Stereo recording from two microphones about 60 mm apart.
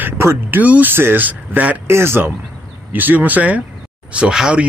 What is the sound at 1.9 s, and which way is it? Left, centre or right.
Speech, right.